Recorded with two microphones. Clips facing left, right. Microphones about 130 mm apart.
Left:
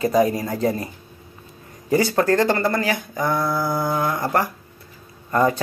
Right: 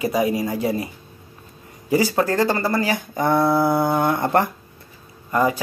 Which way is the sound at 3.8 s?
30° right (ahead or behind).